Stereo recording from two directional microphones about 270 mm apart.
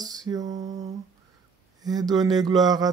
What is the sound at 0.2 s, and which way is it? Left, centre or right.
Mantra, centre.